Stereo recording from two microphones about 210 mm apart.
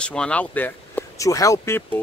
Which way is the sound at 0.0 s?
5° left (ahead or behind).